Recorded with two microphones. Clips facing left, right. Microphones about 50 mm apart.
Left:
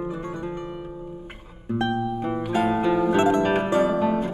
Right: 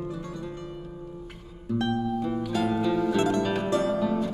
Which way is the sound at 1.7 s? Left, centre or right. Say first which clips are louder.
Left 2 dB; left.